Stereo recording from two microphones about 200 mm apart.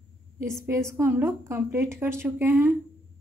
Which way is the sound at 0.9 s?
15° right (ahead or behind).